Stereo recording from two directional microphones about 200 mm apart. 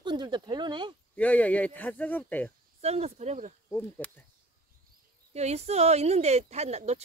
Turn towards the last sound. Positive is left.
turn(degrees=-35)  # may be behind; listen again after turning